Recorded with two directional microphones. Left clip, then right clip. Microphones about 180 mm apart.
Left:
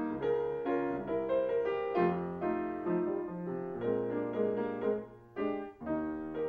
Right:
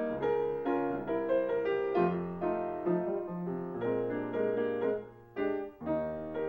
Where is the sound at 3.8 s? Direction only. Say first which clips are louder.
Right 1 dB; 30° right (ahead or behind).